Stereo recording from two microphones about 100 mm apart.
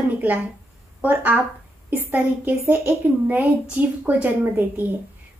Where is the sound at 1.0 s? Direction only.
20° right (ahead or behind).